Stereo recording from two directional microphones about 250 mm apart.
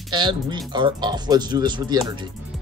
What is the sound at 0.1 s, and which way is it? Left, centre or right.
Speech, centre.